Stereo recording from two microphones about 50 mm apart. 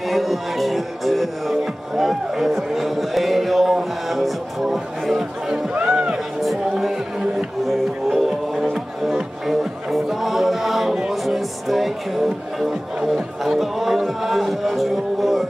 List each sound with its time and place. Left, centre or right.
0.1 s music: centre
5.9 s music: right
6.8 s music: centre